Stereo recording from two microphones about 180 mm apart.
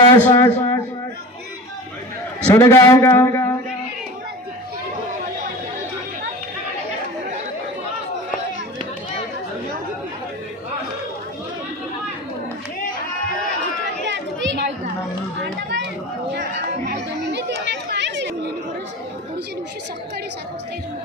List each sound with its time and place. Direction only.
0.2 s speech: 15° left (ahead or behind)
2.5 s speech: 15° left (ahead or behind)
14.0 s chatter: 80° right